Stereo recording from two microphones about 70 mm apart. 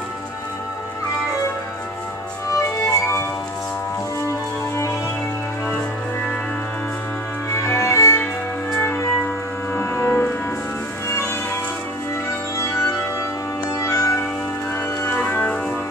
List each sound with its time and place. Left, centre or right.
2.5 s music: left
7.5 s music: left
8.7 s music: left
12.5 s organ: left
13.7 s music: left
15.0 s music: left